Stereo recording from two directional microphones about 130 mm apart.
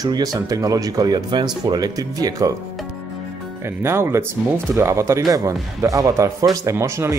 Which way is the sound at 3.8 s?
20° right (ahead or behind).